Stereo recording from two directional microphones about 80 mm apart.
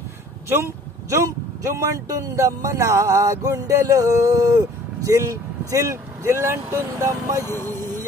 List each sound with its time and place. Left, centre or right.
0.5 s a sound: right
1.2 s speech: right
7.4 s speech: left